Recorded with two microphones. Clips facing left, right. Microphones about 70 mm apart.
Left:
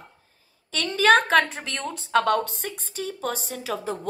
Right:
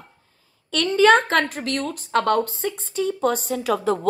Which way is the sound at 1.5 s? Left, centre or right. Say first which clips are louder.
Right 6 dB; left.